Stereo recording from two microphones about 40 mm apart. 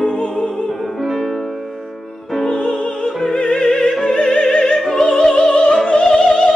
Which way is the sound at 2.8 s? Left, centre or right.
Left.